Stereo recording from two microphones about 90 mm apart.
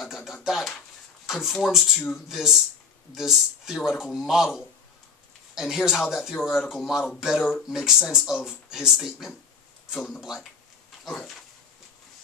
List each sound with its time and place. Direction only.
0.0 s a man's voice: 5° right (ahead or behind)
7.3 s speech: 15° left (ahead or behind)
7.6 s a man's voice: 5° right (ahead or behind)
11.1 s a man's voice: centre (ahead or behind)